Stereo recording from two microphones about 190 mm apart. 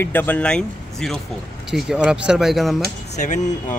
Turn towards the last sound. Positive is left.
turn(degrees=40)  # may be behind; listen again after turning